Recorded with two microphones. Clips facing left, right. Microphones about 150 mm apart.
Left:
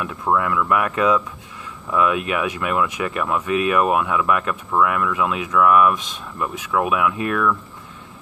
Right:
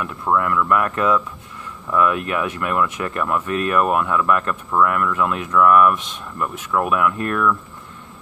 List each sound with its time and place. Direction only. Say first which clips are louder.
0.0 s speech: even; 15° left (ahead or behind)